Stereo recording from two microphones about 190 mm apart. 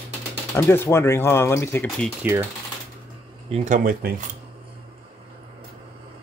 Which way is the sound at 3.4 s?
35° right (ahead or behind).